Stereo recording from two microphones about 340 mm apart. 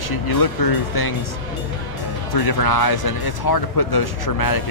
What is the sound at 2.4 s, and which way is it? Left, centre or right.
Speech, left.